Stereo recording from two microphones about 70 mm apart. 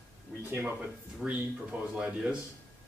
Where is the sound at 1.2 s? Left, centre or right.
Right.